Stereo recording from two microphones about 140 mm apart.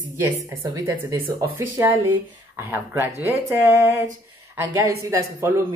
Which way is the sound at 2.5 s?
15° right (ahead or behind).